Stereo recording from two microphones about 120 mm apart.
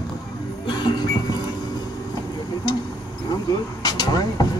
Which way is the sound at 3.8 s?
30° left (ahead or behind).